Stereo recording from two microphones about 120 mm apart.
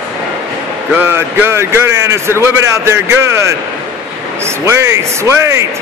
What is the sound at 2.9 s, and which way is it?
Speech, 20° right (ahead or behind).